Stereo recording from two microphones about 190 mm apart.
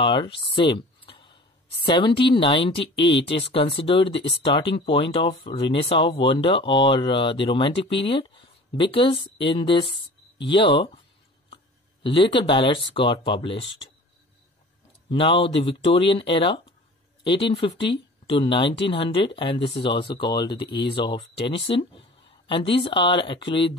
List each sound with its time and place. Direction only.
0.0 s speech: 25° left (ahead or behind)
9.8 s a sound: 65° left (ahead or behind)
10.5 s speech: 25° left (ahead or behind)
11.5 s a sound: 25° left (ahead or behind)
12.9 s speech: 25° left (ahead or behind)
15.0 s speech: 25° left (ahead or behind)